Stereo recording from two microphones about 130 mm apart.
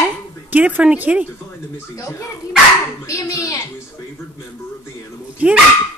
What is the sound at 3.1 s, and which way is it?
Speech, 25° left (ahead or behind).